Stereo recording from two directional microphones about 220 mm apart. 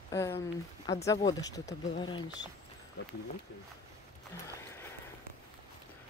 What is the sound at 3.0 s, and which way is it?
Speech, 45° left (ahead or behind).